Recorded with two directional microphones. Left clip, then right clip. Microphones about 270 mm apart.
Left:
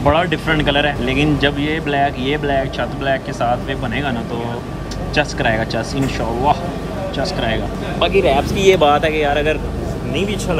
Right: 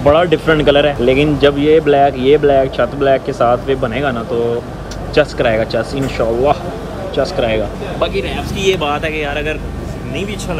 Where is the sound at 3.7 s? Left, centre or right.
Left.